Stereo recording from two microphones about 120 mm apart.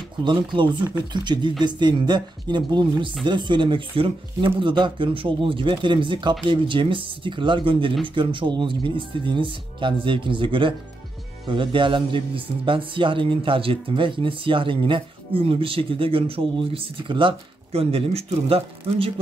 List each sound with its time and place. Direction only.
0.2 s a man's voice: 40° right (ahead or behind)